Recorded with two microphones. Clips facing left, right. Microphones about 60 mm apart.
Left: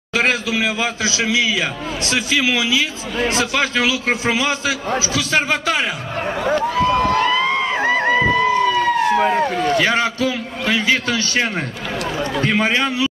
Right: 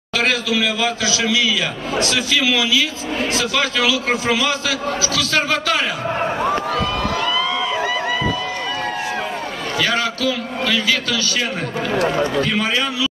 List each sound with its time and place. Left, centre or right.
0.2 s a man's voice: left
7.1 s run: left
9.8 s a man's voice: left